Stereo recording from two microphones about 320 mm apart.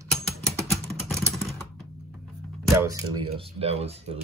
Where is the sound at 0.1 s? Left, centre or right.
Centre.